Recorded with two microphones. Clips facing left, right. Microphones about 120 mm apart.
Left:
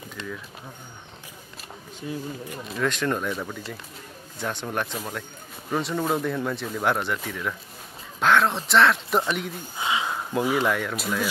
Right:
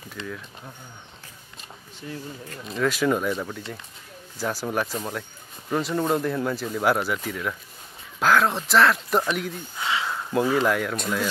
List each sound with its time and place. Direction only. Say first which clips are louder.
2.0 s speech: left 3 dB; 15° left (ahead or behind)
2.6 s speech: right 3 dB; centre (ahead or behind)
9.8 s a sound: left 1 dB; 20° left (ahead or behind)
10.6 s speech: right 2 dB; centre (ahead or behind)